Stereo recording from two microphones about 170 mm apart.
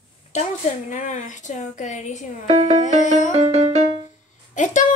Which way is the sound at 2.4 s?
45° right (ahead or behind).